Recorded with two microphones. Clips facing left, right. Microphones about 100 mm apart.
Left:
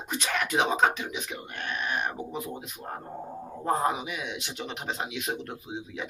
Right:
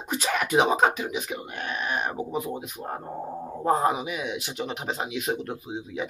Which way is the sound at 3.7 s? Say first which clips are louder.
Right 4 dB; 5° right (ahead or behind).